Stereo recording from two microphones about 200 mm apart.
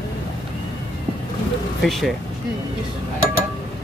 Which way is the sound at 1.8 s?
Centre (ahead or behind).